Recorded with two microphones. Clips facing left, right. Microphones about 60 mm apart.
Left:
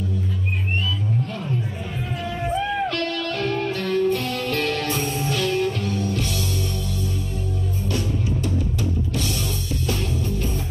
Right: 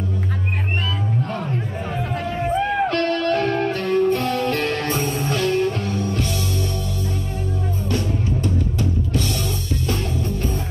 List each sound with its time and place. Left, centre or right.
2.1 s crowd: right
2.6 s music: right